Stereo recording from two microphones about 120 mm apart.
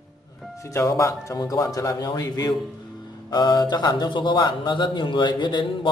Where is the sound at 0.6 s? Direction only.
25° left (ahead or behind).